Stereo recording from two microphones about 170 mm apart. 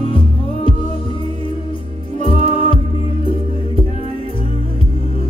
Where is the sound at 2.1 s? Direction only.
35° left (ahead or behind).